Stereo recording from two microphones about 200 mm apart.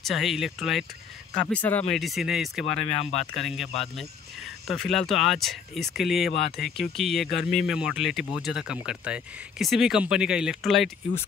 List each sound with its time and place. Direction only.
0.0 s speech: centre (ahead or behind)
2.9 s speech: 35° left (ahead or behind)
3.3 s speech: centre (ahead or behind)